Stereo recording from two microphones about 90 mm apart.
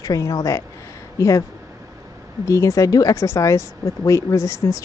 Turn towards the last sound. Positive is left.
turn(degrees=35)  # may be behind; listen again after turning